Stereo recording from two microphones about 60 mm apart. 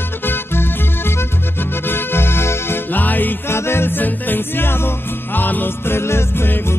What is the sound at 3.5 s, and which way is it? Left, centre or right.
Music, left.